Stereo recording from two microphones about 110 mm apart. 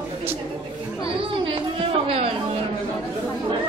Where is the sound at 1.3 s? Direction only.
55° right (ahead or behind).